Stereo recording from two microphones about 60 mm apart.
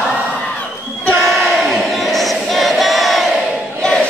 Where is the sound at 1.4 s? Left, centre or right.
Centre.